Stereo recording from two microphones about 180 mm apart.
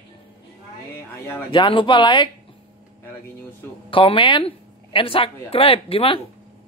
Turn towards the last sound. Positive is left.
turn(degrees=30)  # may be behind; listen again after turning